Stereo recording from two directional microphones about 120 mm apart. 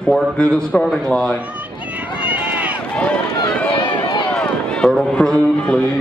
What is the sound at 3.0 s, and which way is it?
Run, 10° left (ahead or behind).